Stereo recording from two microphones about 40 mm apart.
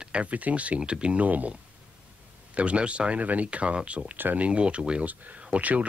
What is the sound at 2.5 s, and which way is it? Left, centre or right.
Speech, right.